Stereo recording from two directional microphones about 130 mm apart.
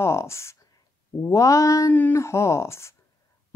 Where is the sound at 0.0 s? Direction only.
20° left (ahead or behind).